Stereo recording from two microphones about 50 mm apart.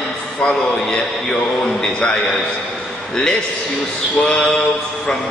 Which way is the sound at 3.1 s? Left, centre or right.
Centre.